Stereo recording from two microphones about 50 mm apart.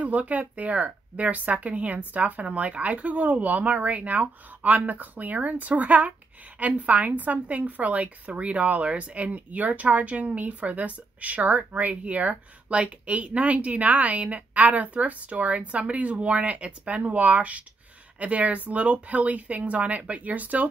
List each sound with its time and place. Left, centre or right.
0.0 s a woman's voice: right